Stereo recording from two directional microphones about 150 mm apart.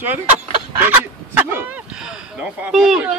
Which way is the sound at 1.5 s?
10° right (ahead or behind).